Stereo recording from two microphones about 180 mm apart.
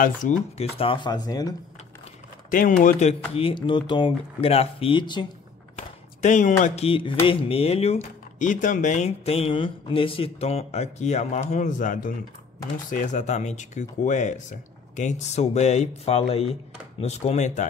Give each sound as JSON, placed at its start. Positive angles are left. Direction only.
{"t": 0.0, "sound": "speech", "side_deg": 45}
{"t": 0.7, "sound": "speech", "side_deg": 30}
{"t": 2.8, "sound": "speech", "side_deg": 45}
{"t": 5.8, "sound": "a sound", "side_deg": 45}
{"t": 6.6, "sound": "speech", "side_deg": 35}